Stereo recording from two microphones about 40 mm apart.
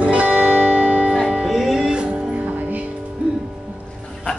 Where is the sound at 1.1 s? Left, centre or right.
Centre.